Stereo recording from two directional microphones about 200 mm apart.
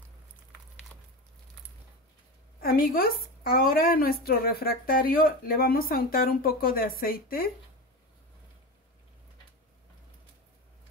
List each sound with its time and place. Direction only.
2.6 s a woman's voice: 45° left (ahead or behind)